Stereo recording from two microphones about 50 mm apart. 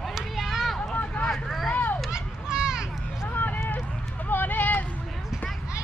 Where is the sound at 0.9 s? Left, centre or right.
Left.